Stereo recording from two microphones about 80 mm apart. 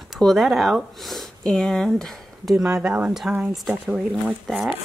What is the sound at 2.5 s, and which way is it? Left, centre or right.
Speech, centre.